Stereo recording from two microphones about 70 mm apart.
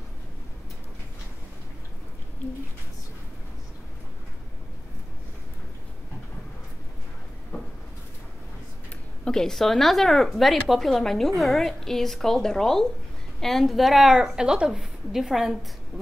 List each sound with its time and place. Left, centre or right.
9.2 s speech: centre